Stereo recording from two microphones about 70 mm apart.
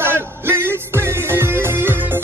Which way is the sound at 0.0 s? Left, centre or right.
Right.